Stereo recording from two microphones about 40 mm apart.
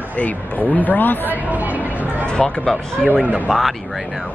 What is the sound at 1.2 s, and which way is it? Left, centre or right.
Speech, right.